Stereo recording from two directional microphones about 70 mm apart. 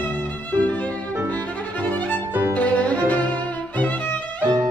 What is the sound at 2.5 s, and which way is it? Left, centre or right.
Music, left.